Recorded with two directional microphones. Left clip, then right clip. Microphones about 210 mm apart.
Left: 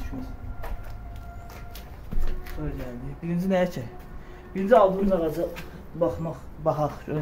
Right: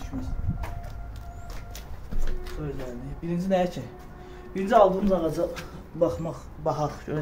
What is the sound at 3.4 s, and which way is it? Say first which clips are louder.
Speech: even; 30° left (ahead or behind).